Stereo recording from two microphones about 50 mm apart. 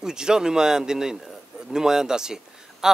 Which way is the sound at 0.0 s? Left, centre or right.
Centre.